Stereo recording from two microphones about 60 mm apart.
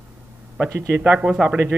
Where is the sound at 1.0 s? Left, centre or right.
Centre.